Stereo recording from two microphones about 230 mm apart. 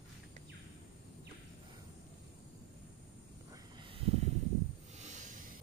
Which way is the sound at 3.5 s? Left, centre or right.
Right.